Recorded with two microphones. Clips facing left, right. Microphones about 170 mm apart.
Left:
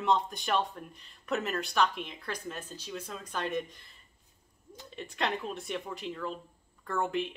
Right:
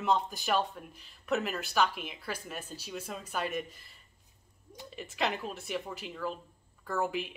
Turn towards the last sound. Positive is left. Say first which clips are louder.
# left 1 dB
turn(degrees=-5)  # may be behind; listen again after turning